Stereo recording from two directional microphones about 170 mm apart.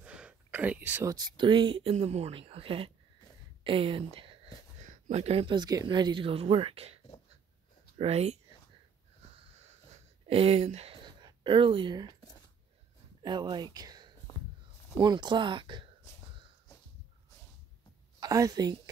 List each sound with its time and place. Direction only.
0.0 s a sound: 5° right (ahead or behind)
1.1 s speech: 25° right (ahead or behind)
4.7 s speech: 45° right (ahead or behind)
8.0 s speech: 40° right (ahead or behind)
10.2 s speech: 35° right (ahead or behind)
13.2 s speech: 25° right (ahead or behind)
13.7 s a sound: 25° right (ahead or behind)
15.0 s speech: 25° right (ahead or behind)
18.2 s a woman's voice: 20° right (ahead or behind)